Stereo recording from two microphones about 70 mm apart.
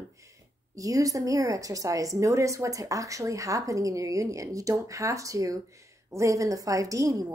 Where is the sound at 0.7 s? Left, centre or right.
Right.